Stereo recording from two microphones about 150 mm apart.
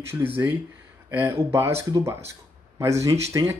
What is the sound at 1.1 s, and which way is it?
Speech, 15° right (ahead or behind).